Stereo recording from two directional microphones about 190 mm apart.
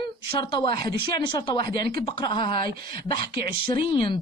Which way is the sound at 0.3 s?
25° left (ahead or behind).